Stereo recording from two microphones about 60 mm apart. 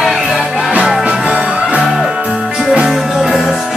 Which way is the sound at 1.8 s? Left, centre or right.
Centre.